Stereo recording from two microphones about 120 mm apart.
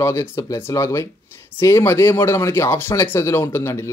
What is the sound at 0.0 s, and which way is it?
Speech, 25° left (ahead or behind).